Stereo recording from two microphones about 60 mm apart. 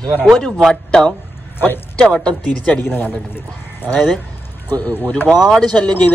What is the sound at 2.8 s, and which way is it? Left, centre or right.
Speech, left.